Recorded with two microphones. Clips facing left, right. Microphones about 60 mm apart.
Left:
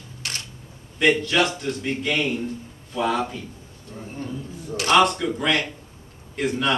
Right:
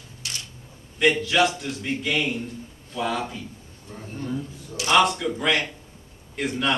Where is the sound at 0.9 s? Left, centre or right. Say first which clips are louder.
Left 1 dB; centre.